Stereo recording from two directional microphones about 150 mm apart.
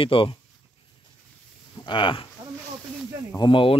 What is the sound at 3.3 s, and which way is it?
Speech, 35° left (ahead or behind).